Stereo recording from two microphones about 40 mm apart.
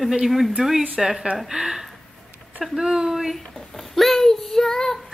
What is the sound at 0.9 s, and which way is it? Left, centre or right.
Speech, centre.